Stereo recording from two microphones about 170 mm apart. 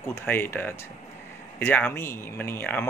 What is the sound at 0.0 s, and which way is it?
Speech, 15° left (ahead or behind).